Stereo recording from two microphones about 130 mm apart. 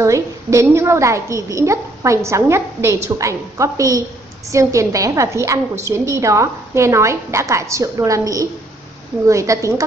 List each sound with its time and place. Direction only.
0.0 s a woman's voice: 25° right (ahead or behind)